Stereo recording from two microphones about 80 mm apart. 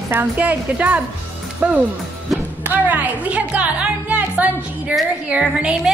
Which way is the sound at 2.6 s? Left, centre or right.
Right.